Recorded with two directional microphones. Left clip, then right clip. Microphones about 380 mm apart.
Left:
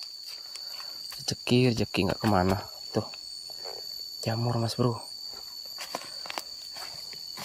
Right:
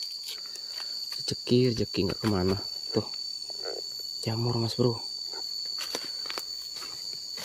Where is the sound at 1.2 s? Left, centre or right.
Centre.